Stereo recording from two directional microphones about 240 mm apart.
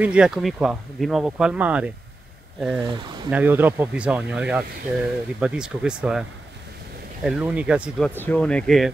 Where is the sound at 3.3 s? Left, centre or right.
Centre.